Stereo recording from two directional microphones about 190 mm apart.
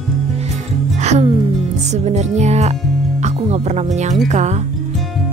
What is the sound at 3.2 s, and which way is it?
Speech, 35° right (ahead or behind).